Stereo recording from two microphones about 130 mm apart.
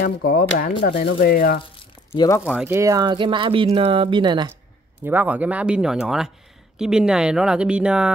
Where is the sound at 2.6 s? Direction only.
25° right (ahead or behind).